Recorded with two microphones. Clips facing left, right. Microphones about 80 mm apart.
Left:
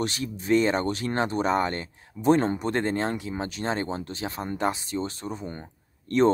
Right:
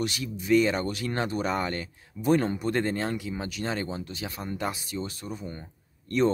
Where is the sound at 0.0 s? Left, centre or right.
Left.